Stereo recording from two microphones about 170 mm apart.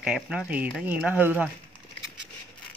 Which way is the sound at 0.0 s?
5° right (ahead or behind).